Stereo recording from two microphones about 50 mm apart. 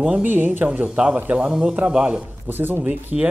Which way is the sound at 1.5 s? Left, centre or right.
Centre.